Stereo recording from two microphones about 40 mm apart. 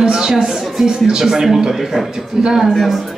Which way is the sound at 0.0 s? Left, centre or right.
Centre.